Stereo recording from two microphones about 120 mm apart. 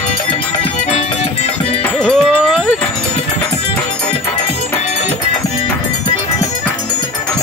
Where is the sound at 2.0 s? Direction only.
Centre (ahead or behind).